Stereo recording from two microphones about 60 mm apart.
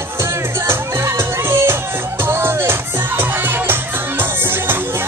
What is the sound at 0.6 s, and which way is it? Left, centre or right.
Music, right.